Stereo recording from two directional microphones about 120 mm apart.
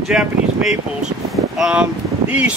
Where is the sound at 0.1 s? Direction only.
5° right (ahead or behind).